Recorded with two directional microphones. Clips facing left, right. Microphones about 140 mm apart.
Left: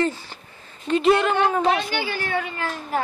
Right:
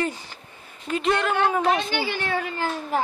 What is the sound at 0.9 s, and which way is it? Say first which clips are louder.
Speech: left 5 dB; centre (ahead or behind).